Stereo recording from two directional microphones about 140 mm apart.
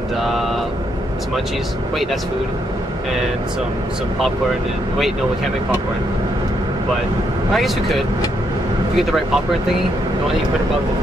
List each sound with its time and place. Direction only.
0.2 s vehicle: centre (ahead or behind)
4.9 s speech: centre (ahead or behind)
7.5 s speech: centre (ahead or behind)